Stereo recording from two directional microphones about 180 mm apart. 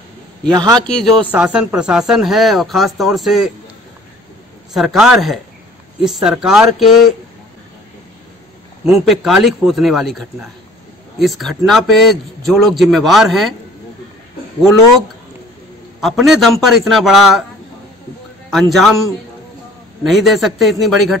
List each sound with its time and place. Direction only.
0.5 s a man's voice: 20° right (ahead or behind)
0.7 s speech: 5° left (ahead or behind)
4.7 s speech: centre (ahead or behind)
8.8 s speech: centre (ahead or behind)
14.6 s speech: centre (ahead or behind)
18.5 s speech: centre (ahead or behind)
20.0 s speech: centre (ahead or behind)